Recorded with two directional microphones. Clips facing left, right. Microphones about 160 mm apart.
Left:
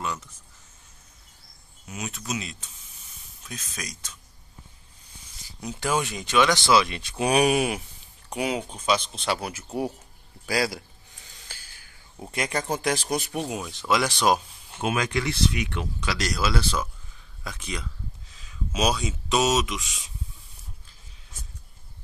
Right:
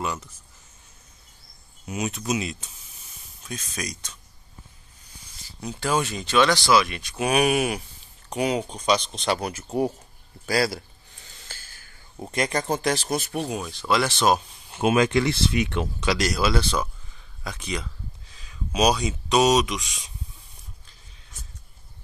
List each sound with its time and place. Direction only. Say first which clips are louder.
1.9 s speech: right 6 dB; 20° right (ahead or behind)
3.4 s speech: right 5 dB; centre (ahead or behind)
5.8 s speech: right 2 dB; 15° left (ahead or behind)
6.7 s speech: right 1 dB; 25° left (ahead or behind)
8.3 s speech: right 3 dB; 5° left (ahead or behind)
11.4 s a sound: right 2 dB; 10° left (ahead or behind)
12.3 s speech: right 3 dB; 10° left (ahead or behind)
14.8 s speech: right 6 dB; 25° right (ahead or behind)
16.2 s speech: right 1 dB; 5° right (ahead or behind)